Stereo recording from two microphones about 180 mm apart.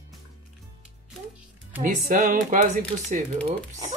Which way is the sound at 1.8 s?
50° right (ahead or behind).